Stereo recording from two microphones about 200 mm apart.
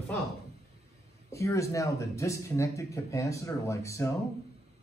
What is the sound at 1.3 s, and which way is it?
Speech, 15° left (ahead or behind).